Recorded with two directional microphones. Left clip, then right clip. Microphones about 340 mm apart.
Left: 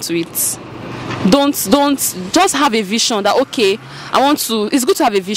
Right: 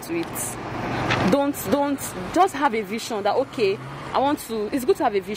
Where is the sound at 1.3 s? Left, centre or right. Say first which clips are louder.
Left 9 dB; left.